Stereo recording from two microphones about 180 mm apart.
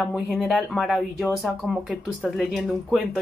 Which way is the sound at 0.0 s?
5° right (ahead or behind).